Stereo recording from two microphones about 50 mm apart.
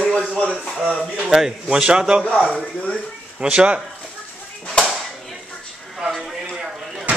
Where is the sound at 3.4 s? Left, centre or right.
Right.